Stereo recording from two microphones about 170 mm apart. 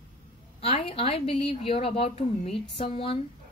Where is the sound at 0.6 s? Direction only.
35° left (ahead or behind).